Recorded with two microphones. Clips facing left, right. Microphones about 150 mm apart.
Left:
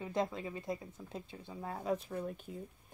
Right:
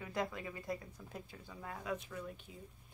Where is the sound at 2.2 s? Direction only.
50° left (ahead or behind).